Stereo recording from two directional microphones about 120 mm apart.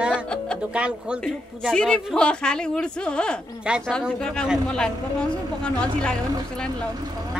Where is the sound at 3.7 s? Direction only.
10° right (ahead or behind).